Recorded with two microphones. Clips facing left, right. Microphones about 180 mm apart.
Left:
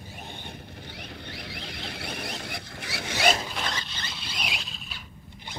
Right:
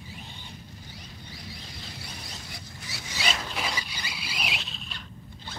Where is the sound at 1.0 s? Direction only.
70° left (ahead or behind).